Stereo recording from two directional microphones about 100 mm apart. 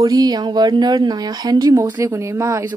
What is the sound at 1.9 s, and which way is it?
Speech, 30° right (ahead or behind).